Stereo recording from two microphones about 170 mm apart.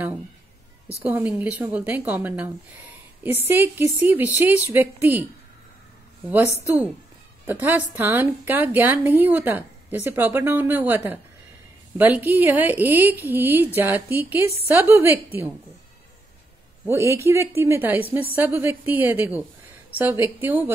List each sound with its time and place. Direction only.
1.0 s a woman's voice: 10° right (ahead or behind)
6.2 s a woman's voice: 10° right (ahead or behind)
12.0 s a woman's voice: 10° right (ahead or behind)
16.8 s a woman's voice: 15° right (ahead or behind)